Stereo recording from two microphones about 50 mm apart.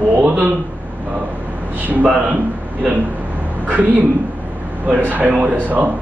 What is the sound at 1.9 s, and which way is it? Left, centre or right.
Speech, right.